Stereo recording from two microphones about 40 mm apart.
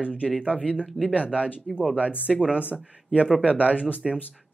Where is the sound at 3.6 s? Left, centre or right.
Left.